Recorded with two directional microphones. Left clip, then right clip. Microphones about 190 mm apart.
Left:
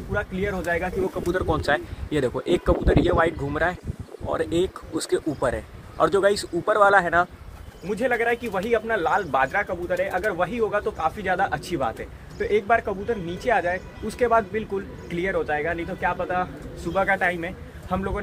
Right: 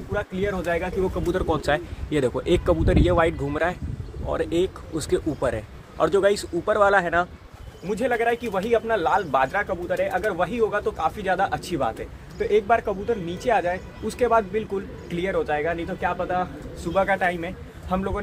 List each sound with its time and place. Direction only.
0.1 s a man's voice: 10° right (ahead or behind)
4.3 s a man's voice: centre (ahead or behind)